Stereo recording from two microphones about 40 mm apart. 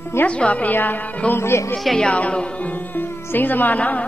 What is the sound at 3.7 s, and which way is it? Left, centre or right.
Speech, left.